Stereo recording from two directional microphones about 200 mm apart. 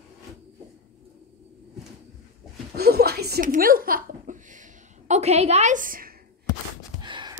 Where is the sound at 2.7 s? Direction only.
50° right (ahead or behind).